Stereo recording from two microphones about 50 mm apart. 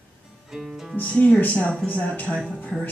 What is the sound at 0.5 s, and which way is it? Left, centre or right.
Music, centre.